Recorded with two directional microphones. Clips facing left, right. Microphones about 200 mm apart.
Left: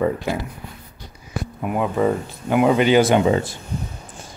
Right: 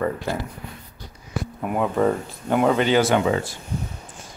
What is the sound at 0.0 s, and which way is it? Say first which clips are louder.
Speech: left 3 dB; 10° left (ahead or behind).